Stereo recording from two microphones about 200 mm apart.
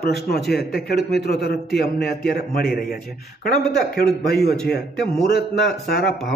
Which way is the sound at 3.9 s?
50° left (ahead or behind).